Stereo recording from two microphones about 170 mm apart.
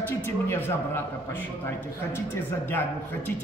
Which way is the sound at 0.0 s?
10° left (ahead or behind).